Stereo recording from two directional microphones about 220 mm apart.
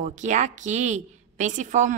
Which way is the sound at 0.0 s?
35° right (ahead or behind).